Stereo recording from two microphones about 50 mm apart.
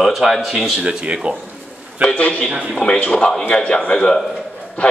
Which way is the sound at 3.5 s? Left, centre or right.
Centre.